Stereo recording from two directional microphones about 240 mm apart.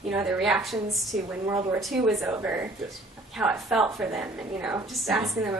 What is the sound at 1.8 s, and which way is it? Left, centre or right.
A woman's voice, centre.